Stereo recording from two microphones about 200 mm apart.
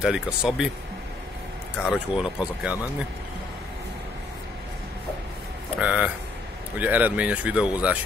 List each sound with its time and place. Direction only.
0.0 s speech: 5° right (ahead or behind)
1.9 s speech: 5° right (ahead or behind)
5.8 s speech: 5° right (ahead or behind)